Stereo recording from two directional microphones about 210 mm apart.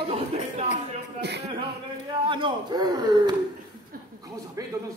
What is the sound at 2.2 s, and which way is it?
A man's voice, 25° right (ahead or behind).